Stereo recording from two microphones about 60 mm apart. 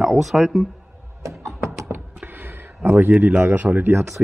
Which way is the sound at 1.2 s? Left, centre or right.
Right.